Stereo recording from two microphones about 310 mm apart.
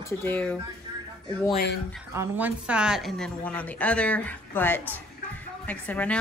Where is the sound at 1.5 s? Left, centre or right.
Left.